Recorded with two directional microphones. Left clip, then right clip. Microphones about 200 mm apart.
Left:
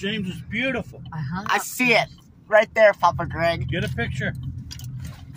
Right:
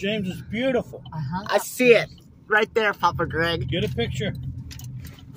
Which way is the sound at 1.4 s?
10° left (ahead or behind).